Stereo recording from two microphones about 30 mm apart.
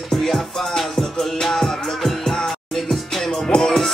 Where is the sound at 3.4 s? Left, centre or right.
Left.